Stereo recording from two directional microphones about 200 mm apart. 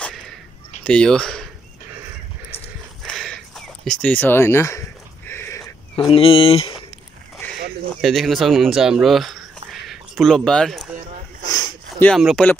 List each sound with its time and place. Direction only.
0.8 s speech: 5° left (ahead or behind)
3.0 s a sound: centre (ahead or behind)
6.1 s speech: 25° left (ahead or behind)
8.0 s speech: centre (ahead or behind)
11.4 s a sound: 20° left (ahead or behind)
12.1 s speech: centre (ahead or behind)